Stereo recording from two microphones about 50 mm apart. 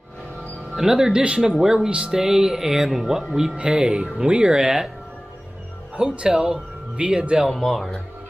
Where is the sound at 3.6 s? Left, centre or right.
Centre.